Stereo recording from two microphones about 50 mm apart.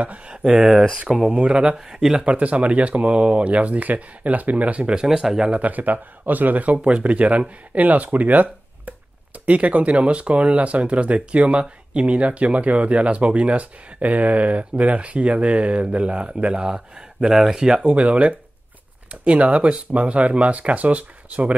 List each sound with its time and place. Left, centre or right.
0.0 s speech: right
0.4 s speech: centre
2.2 s speech: right
5.0 s speech: centre
5.6 s speech: right; by 17.9 s centre
17.9 s speech: right